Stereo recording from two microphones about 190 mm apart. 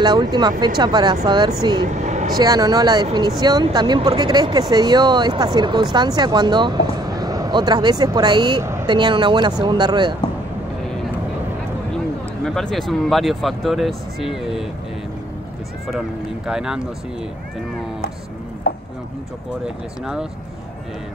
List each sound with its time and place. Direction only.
0.0 s speech: 20° right (ahead or behind)
2.0 s vehicle: 40° right (ahead or behind)
2.3 s speech: 20° right (ahead or behind)
12.4 s speech: centre (ahead or behind)
16.4 s speech: 5° right (ahead or behind)